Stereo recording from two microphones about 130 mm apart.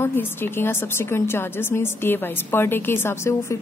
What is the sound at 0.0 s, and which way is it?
A woman's voice, 15° left (ahead or behind).